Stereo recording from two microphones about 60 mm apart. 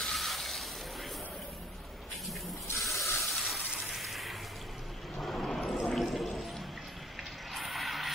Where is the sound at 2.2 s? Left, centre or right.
Centre.